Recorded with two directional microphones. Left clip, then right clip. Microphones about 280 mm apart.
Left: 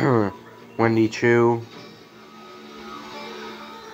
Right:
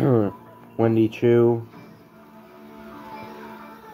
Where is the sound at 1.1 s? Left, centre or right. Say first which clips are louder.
Even; centre.